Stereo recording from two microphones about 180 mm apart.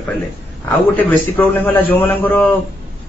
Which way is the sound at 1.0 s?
10° left (ahead or behind).